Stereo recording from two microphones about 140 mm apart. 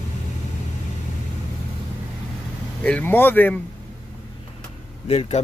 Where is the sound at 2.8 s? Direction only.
10° left (ahead or behind).